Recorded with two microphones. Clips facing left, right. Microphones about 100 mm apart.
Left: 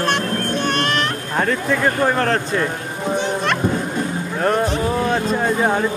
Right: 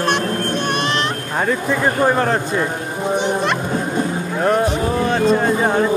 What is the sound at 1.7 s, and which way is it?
Speech, 10° right (ahead or behind).